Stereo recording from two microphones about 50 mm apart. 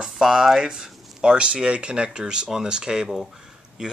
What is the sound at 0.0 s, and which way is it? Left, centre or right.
Speech, centre.